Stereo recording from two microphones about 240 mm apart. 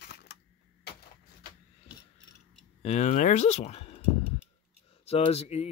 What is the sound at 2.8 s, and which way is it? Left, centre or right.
Speech, left.